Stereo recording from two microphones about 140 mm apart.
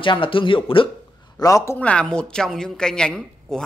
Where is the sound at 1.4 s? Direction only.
20° left (ahead or behind).